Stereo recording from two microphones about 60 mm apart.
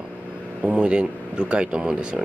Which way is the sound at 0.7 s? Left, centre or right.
Centre.